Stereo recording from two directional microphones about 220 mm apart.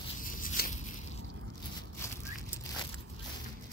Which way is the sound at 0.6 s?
45° left (ahead or behind).